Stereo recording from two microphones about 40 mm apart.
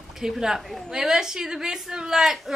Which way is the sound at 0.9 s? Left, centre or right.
Centre.